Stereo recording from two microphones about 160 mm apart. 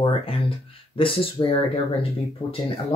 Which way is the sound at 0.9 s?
35° left (ahead or behind).